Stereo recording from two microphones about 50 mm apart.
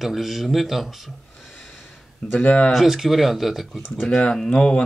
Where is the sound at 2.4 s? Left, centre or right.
Centre.